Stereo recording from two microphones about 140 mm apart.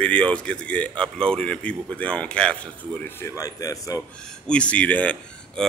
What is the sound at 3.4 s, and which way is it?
Speech, 25° left (ahead or behind).